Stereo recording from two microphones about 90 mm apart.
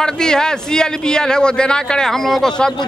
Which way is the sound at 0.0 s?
10° left (ahead or behind).